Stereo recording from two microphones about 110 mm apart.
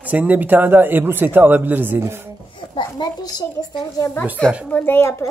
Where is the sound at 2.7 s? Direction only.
45° left (ahead or behind).